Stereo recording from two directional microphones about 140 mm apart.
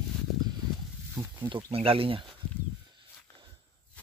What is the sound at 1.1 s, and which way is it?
Speech, 30° right (ahead or behind).